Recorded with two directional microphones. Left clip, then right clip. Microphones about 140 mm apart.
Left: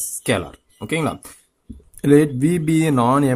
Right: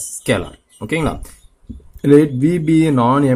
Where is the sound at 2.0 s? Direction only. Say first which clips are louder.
Right 3 dB; 35° left (ahead or behind).